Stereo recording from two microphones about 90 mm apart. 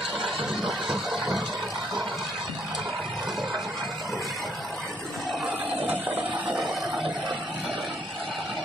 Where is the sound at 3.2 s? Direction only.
Centre (ahead or behind).